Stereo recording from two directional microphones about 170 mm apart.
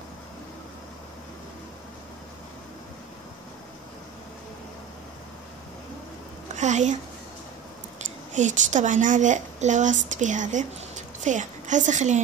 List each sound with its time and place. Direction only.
6.5 s a woman's voice: 45° right (ahead or behind)
8.3 s a woman's voice: 45° right (ahead or behind)